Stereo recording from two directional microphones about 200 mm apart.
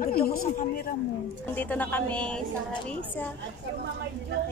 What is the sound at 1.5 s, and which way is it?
A woman's voice, 10° left (ahead or behind).